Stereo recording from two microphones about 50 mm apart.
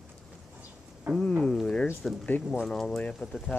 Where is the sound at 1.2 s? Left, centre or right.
Centre.